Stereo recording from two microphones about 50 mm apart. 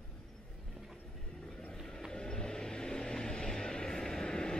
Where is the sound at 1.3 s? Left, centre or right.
Centre.